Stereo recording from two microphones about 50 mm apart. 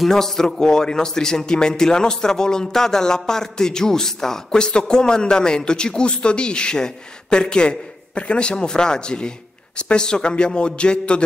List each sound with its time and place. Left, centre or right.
0.0 s a man's voice: centre